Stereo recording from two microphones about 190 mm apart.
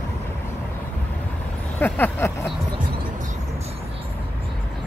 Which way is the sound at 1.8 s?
10° left (ahead or behind).